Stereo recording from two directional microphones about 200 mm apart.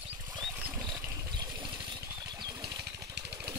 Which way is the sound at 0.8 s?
20° right (ahead or behind).